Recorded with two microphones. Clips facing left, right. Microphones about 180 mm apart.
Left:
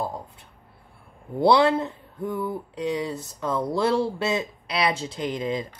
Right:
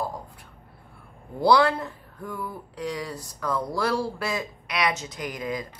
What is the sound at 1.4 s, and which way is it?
Speech, 25° left (ahead or behind).